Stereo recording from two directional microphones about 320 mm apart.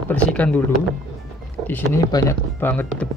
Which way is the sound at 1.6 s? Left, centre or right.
Centre.